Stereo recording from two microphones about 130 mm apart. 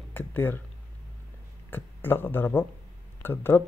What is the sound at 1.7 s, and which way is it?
Speech, 15° left (ahead or behind).